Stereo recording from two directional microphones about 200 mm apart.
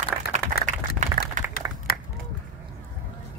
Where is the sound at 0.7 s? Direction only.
40° right (ahead or behind).